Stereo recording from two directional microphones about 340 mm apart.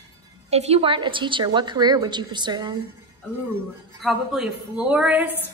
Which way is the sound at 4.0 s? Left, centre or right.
Centre.